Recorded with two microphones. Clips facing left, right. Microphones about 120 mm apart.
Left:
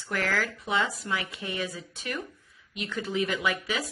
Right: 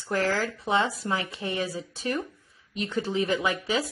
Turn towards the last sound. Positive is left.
turn(degrees=-30)  # may be behind; listen again after turning